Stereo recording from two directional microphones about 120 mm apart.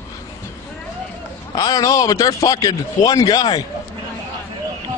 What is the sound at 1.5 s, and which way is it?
A man's voice, 35° left (ahead or behind).